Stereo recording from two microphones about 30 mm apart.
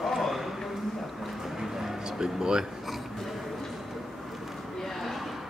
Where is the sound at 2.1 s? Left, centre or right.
Right.